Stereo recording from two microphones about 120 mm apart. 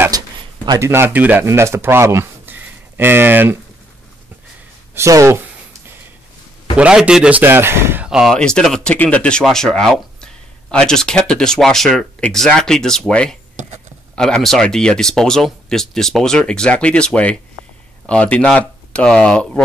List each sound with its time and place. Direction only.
0.7 s speech: 20° right (ahead or behind)
4.9 s speech: 25° right (ahead or behind)
6.8 s a man's voice: 5° right (ahead or behind)
8.0 s speech: 5° right (ahead or behind)
8.4 s speech: 5° left (ahead or behind)